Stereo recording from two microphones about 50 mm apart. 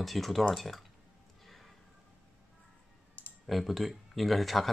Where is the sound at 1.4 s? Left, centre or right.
Centre.